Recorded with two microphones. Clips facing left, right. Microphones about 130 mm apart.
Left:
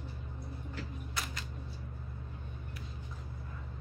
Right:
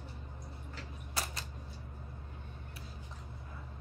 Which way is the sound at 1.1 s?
35° right (ahead or behind).